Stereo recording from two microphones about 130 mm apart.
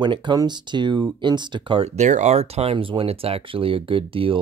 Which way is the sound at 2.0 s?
65° right (ahead or behind).